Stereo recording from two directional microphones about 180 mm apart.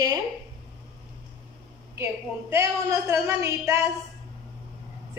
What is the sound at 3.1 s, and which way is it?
Speech, 15° right (ahead or behind).